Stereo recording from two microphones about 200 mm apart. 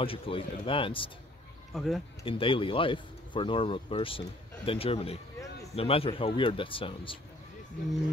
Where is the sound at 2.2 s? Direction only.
25° left (ahead or behind).